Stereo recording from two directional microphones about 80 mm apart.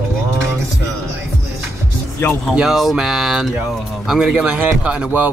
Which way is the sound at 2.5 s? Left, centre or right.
Centre.